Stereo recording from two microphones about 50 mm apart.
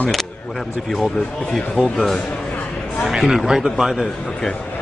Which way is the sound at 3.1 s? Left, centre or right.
Centre.